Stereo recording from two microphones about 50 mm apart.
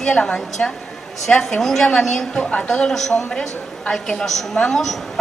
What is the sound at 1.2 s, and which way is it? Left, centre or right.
A woman's voice, centre.